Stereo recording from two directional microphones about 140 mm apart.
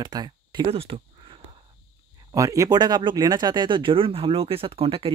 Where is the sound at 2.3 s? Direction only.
25° right (ahead or behind).